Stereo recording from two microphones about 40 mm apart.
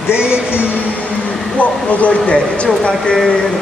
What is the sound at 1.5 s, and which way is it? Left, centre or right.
Speech, left.